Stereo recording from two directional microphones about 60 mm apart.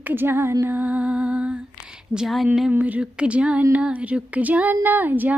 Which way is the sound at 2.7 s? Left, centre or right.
Right.